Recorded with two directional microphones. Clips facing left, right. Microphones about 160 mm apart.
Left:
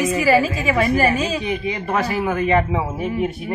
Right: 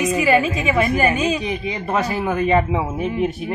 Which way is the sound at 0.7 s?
Centre (ahead or behind).